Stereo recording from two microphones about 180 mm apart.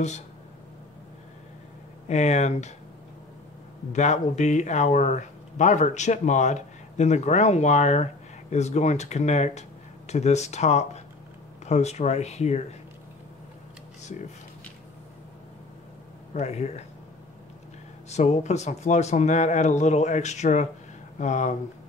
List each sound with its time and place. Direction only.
2.0 s speech: 40° left (ahead or behind)
3.9 s speech: 40° left (ahead or behind)
16.3 s speech: 35° left (ahead or behind)
18.1 s speech: 40° left (ahead or behind)